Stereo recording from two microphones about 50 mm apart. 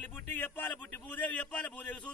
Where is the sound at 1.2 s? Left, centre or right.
Left.